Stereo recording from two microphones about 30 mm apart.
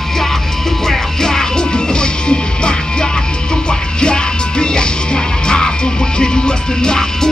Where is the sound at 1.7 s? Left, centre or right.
Left.